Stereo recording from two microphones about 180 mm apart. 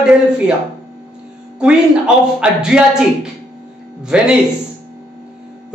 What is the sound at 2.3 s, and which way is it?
A man's voice, 5° right (ahead or behind).